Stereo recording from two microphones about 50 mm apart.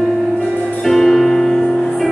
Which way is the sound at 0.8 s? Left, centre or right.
Centre.